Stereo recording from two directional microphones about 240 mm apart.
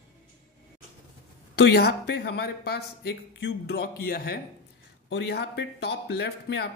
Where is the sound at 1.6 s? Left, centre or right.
Left.